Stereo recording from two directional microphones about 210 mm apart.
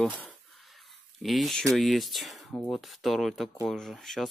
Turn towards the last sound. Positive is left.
turn(degrees=0)  # may be behind; listen again after turning